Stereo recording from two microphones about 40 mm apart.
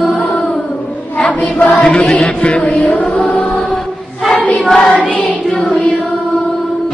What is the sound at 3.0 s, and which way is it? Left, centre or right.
Music, left.